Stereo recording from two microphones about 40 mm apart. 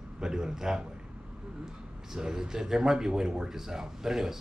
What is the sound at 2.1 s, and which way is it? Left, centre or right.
Speech, centre.